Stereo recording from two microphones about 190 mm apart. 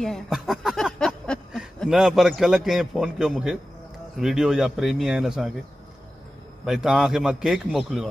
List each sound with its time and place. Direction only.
0.0 s a man's voice: centre (ahead or behind)
6.6 s a man's voice: centre (ahead or behind)